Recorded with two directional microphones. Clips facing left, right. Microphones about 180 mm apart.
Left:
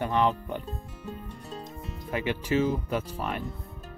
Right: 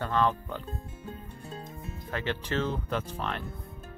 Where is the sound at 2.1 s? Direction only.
10° left (ahead or behind).